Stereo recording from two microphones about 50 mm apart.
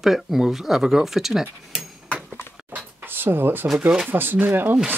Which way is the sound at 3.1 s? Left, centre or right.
Right.